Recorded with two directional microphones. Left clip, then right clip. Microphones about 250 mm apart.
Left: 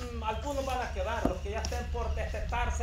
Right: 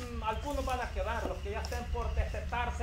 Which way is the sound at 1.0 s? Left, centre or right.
Left.